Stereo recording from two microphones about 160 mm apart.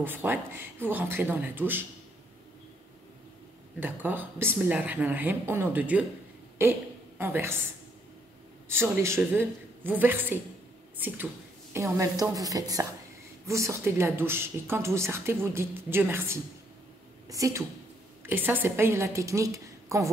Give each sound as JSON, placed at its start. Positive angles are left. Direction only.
{"t": 0.0, "sound": "a woman's voice", "side_deg": -15}
{"t": 3.8, "sound": "a woman's voice", "side_deg": -10}
{"t": 7.2, "sound": "a woman's voice", "side_deg": -15}
{"t": 8.6, "sound": "a woman's voice", "side_deg": -15}